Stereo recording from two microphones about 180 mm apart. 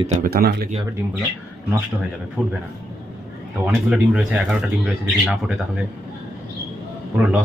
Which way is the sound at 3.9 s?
5° right (ahead or behind).